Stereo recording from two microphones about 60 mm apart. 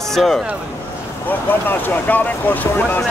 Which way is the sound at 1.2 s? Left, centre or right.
Left.